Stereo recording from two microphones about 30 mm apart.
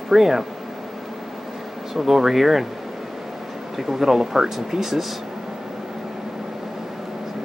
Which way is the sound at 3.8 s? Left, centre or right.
Centre.